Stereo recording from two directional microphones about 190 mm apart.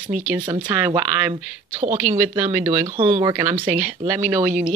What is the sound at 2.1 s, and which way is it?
Speech, 15° right (ahead or behind).